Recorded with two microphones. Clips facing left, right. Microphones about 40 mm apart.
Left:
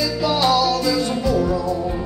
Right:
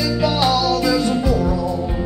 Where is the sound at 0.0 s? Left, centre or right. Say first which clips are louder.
Right 1 dB; centre.